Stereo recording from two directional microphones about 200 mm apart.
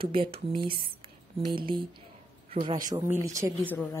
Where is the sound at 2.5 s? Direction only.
25° right (ahead or behind).